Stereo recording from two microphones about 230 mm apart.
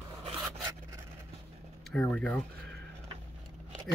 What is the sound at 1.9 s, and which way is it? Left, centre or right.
Speech, centre.